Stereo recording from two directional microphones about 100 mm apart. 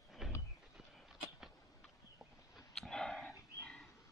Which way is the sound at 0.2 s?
5° right (ahead or behind).